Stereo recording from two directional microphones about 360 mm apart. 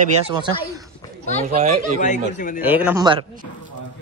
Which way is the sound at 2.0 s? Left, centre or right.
Centre.